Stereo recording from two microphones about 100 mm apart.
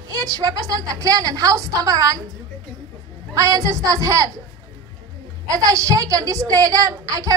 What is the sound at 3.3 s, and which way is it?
A woman's voice, 35° right (ahead or behind).